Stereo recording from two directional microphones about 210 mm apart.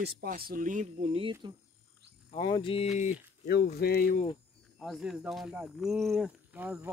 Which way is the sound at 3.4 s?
50° left (ahead or behind).